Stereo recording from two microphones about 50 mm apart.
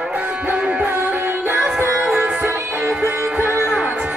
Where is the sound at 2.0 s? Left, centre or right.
Right.